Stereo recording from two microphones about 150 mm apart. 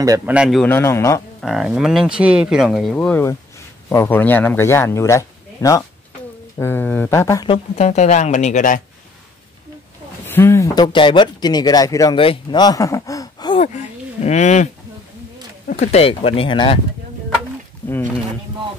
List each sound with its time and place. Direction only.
0.2 s speech: 5° right (ahead or behind)
0.6 s a man's voice: 15° left (ahead or behind)
1.4 s a man's voice: 5° right (ahead or behind); by 7.4 s 20° left (ahead or behind)
7.4 s speech: 45° left (ahead or behind); by 8.8 s 60° left (ahead or behind)
10.2 s speech: 15° left (ahead or behind)
12.2 s speech: 35° left (ahead or behind)
14.2 s speech: 50° left (ahead or behind)
15.7 s speech: 50° left (ahead or behind)
17.8 s speech: 15° left (ahead or behind)